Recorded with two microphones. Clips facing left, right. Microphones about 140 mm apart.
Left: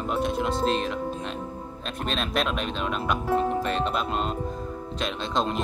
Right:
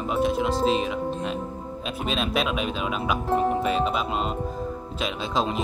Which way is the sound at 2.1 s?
5° right (ahead or behind).